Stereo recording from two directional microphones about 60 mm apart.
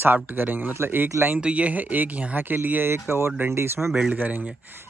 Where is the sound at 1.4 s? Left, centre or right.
Right.